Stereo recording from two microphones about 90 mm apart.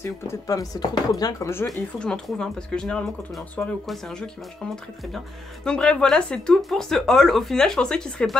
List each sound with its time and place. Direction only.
0.0 s speech: 35° left (ahead or behind)
2.0 s speech: 10° left (ahead or behind)